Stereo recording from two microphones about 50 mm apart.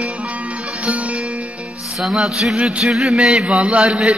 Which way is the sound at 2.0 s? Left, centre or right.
Centre.